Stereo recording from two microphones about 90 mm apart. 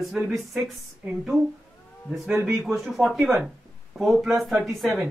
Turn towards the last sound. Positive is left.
turn(degrees=0)  # may be behind; listen again after turning